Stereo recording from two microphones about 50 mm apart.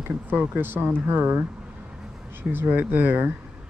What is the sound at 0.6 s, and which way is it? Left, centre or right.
Speech, right.